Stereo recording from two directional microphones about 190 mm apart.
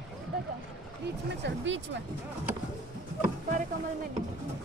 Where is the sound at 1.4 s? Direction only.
75° right (ahead or behind).